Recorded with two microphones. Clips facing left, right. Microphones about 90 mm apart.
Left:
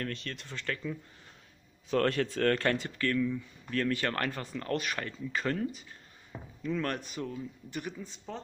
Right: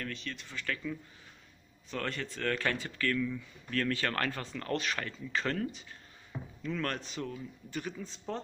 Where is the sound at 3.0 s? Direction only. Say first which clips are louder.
Left 2 dB; 20° left (ahead or behind).